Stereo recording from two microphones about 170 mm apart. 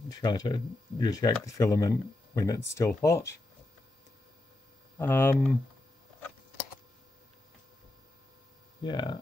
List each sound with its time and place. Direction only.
0.1 s speech: 25° left (ahead or behind)
4.9 s speech: 15° left (ahead or behind)
8.8 s speech: 25° left (ahead or behind)